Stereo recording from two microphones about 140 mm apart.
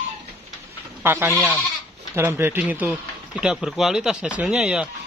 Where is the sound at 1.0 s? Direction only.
15° right (ahead or behind).